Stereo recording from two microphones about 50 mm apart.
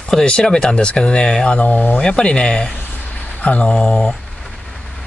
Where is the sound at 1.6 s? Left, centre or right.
Left.